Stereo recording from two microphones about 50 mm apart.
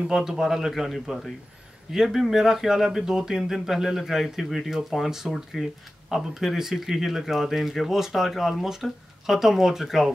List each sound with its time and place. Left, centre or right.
0.1 s speech: centre